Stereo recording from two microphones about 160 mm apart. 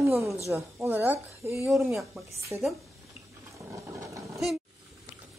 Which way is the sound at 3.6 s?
20° right (ahead or behind).